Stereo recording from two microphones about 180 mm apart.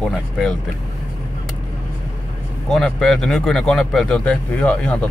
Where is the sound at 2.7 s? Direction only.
Centre (ahead or behind).